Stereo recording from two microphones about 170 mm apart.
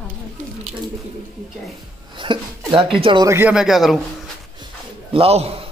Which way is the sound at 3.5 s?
Centre (ahead or behind).